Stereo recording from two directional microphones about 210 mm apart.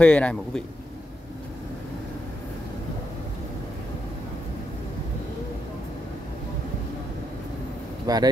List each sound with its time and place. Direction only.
0.0 s a man's voice: 5° left (ahead or behind)
8.1 s speech: 15° right (ahead or behind)